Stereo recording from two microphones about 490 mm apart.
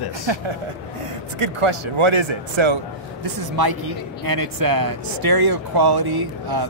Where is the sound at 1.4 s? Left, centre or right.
Right.